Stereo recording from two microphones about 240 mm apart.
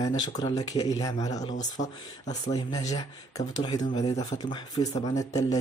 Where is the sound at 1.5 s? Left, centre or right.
Left.